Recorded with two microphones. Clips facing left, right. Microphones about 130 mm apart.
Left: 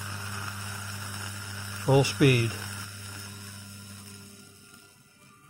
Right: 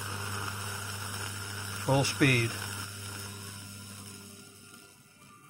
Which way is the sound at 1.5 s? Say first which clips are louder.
Even; 10° right (ahead or behind).